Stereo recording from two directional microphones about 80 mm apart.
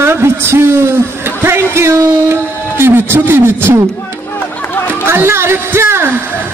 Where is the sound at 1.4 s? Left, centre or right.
Right.